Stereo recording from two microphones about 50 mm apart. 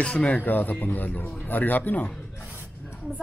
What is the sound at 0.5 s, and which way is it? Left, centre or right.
A man's voice, left.